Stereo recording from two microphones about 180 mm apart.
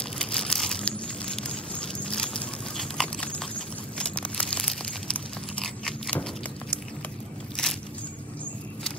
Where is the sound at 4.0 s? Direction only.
5° left (ahead or behind).